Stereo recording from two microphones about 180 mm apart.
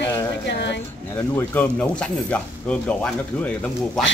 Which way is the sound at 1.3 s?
10° left (ahead or behind).